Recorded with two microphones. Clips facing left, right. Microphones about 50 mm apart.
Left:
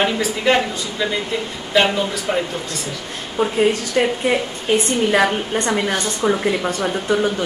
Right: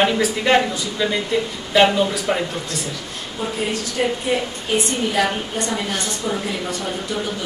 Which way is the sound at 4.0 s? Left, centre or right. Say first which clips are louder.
Left 3 dB; left.